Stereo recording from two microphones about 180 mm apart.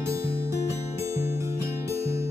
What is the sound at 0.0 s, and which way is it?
Music, 15° right (ahead or behind).